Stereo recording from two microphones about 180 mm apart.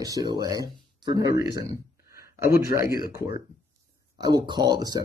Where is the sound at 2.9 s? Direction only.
55° left (ahead or behind).